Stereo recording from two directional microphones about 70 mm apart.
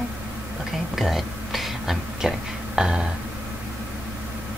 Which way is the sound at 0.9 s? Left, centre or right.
Centre.